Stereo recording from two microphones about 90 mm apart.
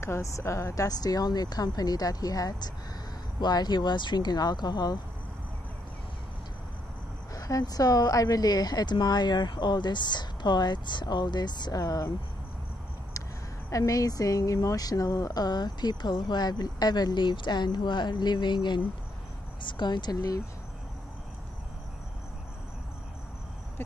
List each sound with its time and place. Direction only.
0.0 s speech: 35° left (ahead or behind); by 4.9 s 50° left (ahead or behind)
7.3 s speech: 40° left (ahead or behind)
13.7 s speech: 40° left (ahead or behind)